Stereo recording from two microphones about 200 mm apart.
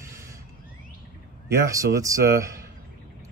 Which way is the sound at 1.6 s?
15° right (ahead or behind).